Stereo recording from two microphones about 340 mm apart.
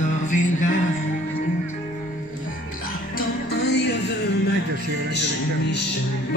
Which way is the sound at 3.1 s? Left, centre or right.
Left.